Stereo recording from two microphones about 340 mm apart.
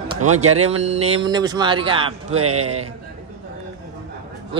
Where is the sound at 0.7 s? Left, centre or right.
Centre.